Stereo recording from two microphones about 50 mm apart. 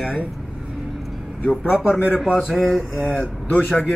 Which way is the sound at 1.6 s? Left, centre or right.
Centre.